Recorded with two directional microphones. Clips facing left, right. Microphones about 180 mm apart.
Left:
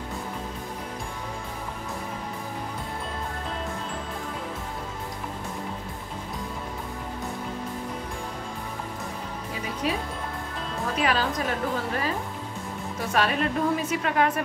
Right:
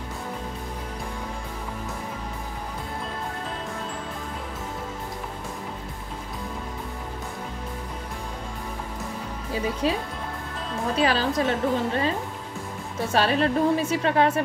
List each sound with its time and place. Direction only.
9.8 s a woman's voice: 30° right (ahead or behind)
13.1 s a woman's voice: 30° right (ahead or behind)